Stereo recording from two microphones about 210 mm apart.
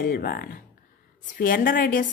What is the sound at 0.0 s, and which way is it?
A woman's voice, 45° left (ahead or behind).